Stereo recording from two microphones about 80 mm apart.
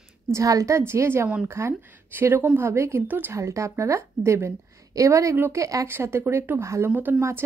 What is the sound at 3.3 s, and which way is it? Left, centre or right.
A woman's voice, right.